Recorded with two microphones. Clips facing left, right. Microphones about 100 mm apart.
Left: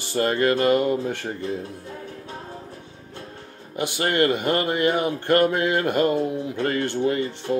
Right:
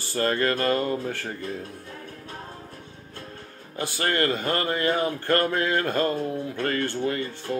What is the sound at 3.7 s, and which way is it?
Speech, 20° left (ahead or behind).